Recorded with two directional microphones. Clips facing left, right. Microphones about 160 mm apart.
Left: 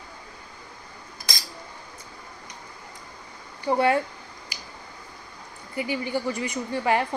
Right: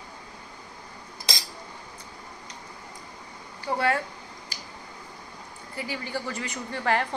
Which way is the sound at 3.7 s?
20° left (ahead or behind).